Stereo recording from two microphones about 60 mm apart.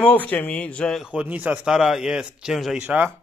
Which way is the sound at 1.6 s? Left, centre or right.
Centre.